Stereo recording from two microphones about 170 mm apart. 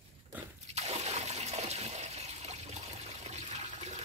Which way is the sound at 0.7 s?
40° right (ahead or behind).